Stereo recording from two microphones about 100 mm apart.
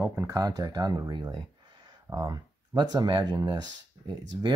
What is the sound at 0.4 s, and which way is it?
Speech, 40° right (ahead or behind).